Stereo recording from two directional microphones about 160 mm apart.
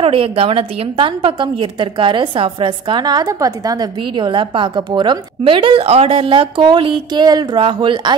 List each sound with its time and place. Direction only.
0.0 s a woman's voice: 35° right (ahead or behind)